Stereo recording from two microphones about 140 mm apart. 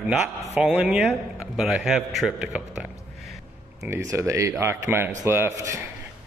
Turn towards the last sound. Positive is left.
turn(degrees=-25)  # may be behind; listen again after turning